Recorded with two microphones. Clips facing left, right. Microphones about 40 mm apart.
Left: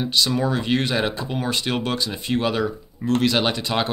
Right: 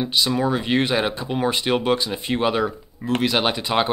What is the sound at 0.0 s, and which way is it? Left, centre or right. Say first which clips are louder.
Speech: right 1 dB; centre.